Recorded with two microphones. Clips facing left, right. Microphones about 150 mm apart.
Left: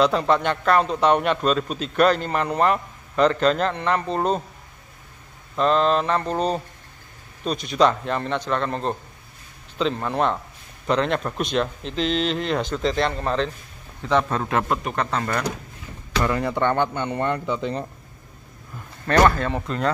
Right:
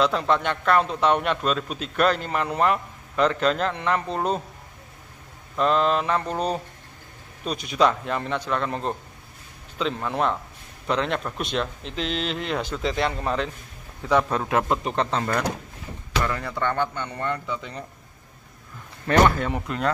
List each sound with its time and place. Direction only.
0.0 s a man's voice: centre (ahead or behind)
5.6 s a man's voice: 5° right (ahead or behind)
14.7 s a man's voice: 25° right (ahead or behind)
16.3 s speech: 20° left (ahead or behind)
19.0 s a man's voice: 15° right (ahead or behind)